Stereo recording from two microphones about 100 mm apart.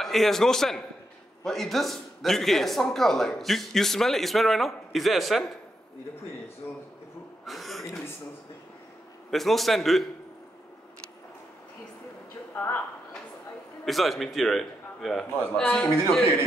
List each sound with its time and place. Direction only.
0.0 s speech: centre (ahead or behind)
7.4 s speech: centre (ahead or behind)
9.3 s speech: centre (ahead or behind)
12.5 s speech: 25° left (ahead or behind)
13.8 s speech: centre (ahead or behind)